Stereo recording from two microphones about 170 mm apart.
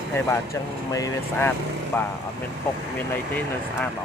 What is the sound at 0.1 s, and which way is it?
Speech, 15° left (ahead or behind).